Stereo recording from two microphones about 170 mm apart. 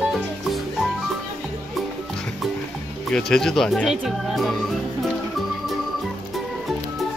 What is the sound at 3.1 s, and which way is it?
Speech, 5° left (ahead or behind).